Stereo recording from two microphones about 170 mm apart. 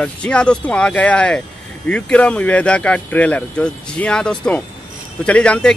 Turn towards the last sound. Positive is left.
turn(degrees=5)  # may be behind; listen again after turning